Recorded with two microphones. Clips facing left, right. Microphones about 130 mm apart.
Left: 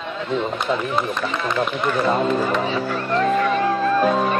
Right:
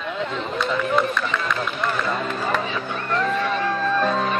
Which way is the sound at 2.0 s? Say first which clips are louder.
Left 6 dB; 30° left (ahead or behind).